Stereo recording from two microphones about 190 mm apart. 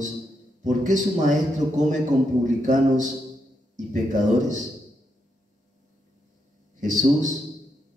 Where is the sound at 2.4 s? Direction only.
40° right (ahead or behind).